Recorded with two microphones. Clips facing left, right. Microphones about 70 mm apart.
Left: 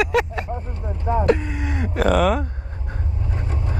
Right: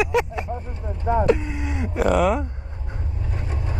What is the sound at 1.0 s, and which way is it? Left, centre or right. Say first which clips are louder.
Speech: even; centre.